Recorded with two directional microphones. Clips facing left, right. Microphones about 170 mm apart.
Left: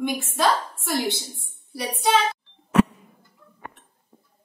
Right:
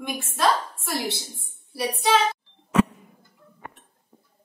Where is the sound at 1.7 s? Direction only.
Centre (ahead or behind).